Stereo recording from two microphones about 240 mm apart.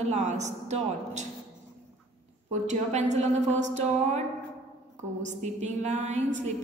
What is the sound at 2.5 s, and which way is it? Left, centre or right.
A woman's voice, right.